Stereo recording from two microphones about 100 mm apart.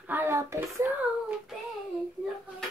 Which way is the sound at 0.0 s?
20° right (ahead or behind).